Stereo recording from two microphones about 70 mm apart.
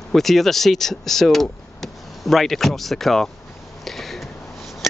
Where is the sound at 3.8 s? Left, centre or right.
Centre.